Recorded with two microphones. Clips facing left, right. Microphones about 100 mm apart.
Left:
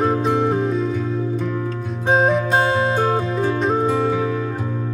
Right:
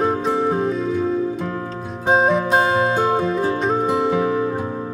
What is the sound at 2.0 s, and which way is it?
Music, centre (ahead or behind).